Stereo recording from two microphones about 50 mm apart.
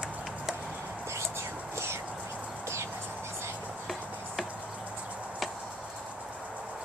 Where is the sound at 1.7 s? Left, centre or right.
Right.